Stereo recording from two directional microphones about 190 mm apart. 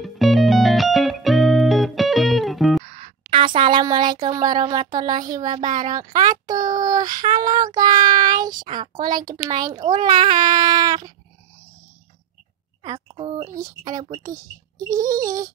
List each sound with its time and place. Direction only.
0.0 s music: centre (ahead or behind)
2.8 s a woman's voice: 35° right (ahead or behind)
5.6 s speech: 40° right (ahead or behind)
6.2 s child singing: 20° right (ahead or behind)
8.5 s speech: 25° right (ahead or behind)
12.8 s a sound: 20° right (ahead or behind)
13.5 s speech: 15° right (ahead or behind)